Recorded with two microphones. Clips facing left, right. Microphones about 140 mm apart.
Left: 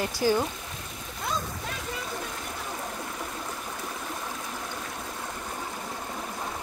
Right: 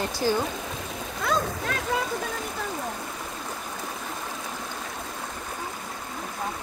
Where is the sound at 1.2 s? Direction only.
90° right.